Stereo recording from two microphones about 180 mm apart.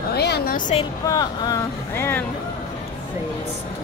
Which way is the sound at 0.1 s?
65° left (ahead or behind).